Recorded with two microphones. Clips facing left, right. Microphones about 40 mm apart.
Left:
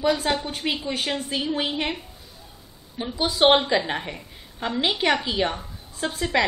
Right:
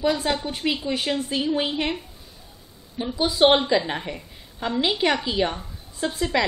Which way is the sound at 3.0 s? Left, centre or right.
Centre.